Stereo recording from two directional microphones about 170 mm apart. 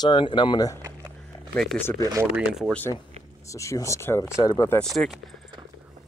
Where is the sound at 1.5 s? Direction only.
5° left (ahead or behind).